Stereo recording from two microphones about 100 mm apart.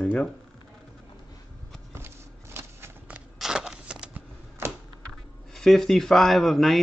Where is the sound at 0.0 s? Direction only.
10° left (ahead or behind).